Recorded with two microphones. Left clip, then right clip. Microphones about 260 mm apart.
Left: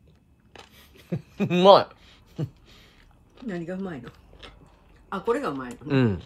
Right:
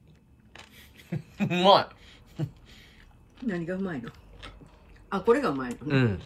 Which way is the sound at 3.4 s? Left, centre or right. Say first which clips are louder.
Right 1 dB; left.